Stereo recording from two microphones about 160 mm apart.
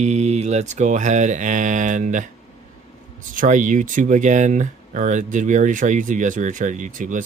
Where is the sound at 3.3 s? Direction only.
55° right (ahead or behind).